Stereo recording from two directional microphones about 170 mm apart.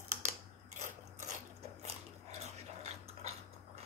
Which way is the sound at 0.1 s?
45° right (ahead or behind).